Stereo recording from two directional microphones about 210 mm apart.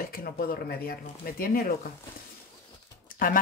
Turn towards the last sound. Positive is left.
turn(degrees=40)  # may be behind; listen again after turning